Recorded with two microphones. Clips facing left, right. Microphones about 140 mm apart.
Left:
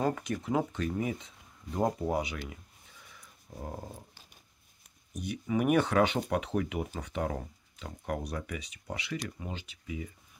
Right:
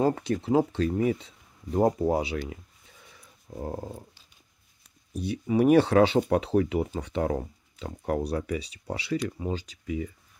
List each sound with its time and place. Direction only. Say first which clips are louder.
0.0 s speech: right 6 dB; 30° right (ahead or behind)
3.6 s speech: right 7 dB; 40° right (ahead or behind)
5.1 s speech: right 6 dB; 30° right (ahead or behind)